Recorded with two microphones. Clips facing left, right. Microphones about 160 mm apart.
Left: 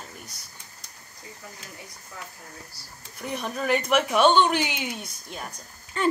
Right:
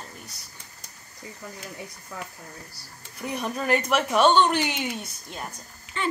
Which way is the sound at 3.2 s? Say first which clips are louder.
Right 1 dB; centre (ahead or behind).